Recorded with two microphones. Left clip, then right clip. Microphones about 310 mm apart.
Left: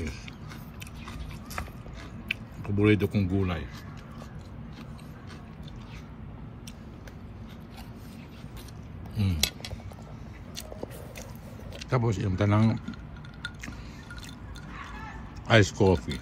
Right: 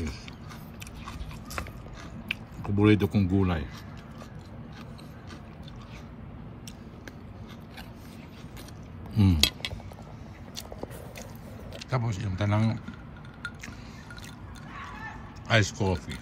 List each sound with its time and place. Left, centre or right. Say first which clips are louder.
2.2 s speech: left 1 dB; centre
9.1 s speech: right 7 dB; right
11.8 s speech: left 4 dB; centre
14.8 s a sound: right 2 dB; centre